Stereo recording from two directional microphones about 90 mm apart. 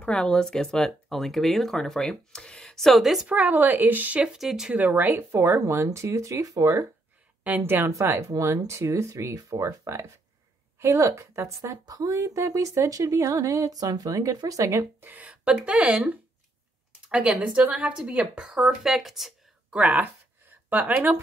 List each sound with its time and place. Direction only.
0.0 s speech: 10° left (ahead or behind)
3.3 s speech: 15° right (ahead or behind)
4.7 s speech: 20° right (ahead or behind)
5.3 s speech: 30° right (ahead or behind)
7.4 s speech: 20° right (ahead or behind)
8.3 s speech: 35° right (ahead or behind)
15.0 s speech: 15° right (ahead or behind)
17.1 s speech: 10° right (ahead or behind)
19.7 s a sound: 15° right (ahead or behind)